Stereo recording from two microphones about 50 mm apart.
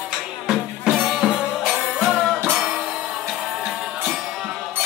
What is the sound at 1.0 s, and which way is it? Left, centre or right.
Music, centre.